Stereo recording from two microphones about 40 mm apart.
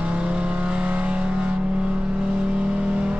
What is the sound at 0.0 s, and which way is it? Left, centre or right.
Vehicle, right.